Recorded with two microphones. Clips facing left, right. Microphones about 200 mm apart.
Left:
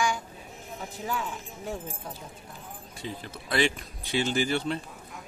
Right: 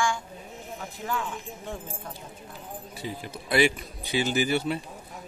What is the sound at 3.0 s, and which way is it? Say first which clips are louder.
Speech: right 1 dB; 10° right (ahead or behind).